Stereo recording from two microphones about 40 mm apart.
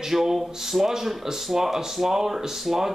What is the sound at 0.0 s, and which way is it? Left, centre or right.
Speech, centre.